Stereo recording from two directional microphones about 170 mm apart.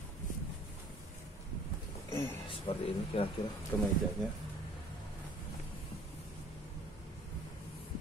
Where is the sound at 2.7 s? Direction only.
35° left (ahead or behind).